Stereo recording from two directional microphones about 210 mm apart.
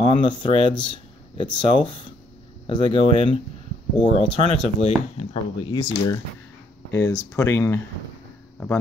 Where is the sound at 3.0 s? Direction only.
35° right (ahead or behind).